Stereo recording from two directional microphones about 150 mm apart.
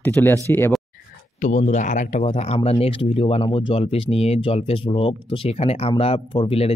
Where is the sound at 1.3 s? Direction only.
55° left (ahead or behind).